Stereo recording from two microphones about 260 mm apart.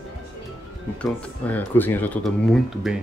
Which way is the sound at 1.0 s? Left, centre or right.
Centre.